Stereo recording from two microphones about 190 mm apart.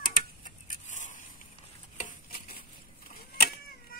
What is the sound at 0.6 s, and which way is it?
Vehicle, 40° left (ahead or behind).